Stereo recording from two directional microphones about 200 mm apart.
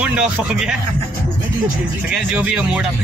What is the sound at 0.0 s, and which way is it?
Speech, 5° right (ahead or behind).